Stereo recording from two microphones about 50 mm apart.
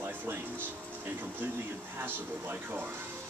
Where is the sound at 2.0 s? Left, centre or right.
Right.